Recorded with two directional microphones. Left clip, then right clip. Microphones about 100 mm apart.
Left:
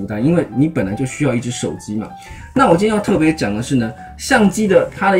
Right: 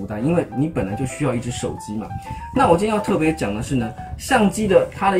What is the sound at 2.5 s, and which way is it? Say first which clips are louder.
Speech: left 3 dB; 15° left (ahead or behind).